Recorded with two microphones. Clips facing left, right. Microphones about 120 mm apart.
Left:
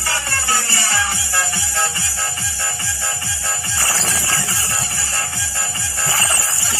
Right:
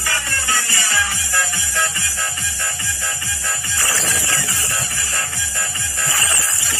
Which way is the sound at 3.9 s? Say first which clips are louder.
Even; 30° left (ahead or behind).